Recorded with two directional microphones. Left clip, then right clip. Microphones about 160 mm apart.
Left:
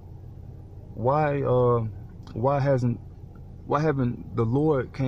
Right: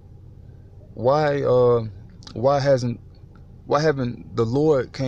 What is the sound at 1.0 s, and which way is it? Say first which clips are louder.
Speech: right 5 dB; 20° right (ahead or behind).